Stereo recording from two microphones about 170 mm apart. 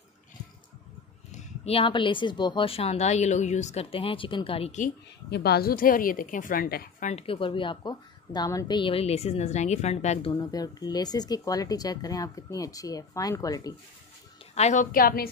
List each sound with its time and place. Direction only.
1.3 s speech: 35° left (ahead or behind)
5.3 s a woman's voice: 70° left (ahead or behind)
7.1 s speech: 35° left (ahead or behind)
10.3 s speech: 20° left (ahead or behind)
14.5 s a woman's voice: 40° left (ahead or behind); by 15.2 s 60° left (ahead or behind)